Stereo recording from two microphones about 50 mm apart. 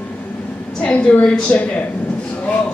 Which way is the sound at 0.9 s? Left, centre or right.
Left.